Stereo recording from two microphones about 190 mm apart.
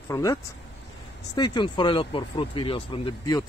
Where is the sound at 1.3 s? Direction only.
25° left (ahead or behind).